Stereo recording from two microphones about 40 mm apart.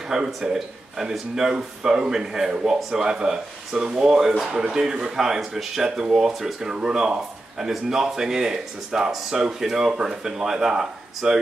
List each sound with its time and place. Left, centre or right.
0.4 s speech: centre